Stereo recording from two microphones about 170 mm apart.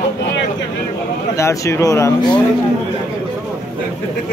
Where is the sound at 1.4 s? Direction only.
15° left (ahead or behind).